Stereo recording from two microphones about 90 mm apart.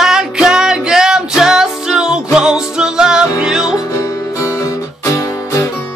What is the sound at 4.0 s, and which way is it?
Music, 35° left (ahead or behind).